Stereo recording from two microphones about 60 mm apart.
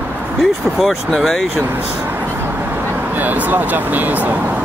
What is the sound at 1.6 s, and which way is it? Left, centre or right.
Speech, right.